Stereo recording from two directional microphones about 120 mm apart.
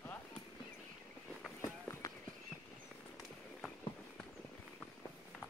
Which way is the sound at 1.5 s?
30° left (ahead or behind).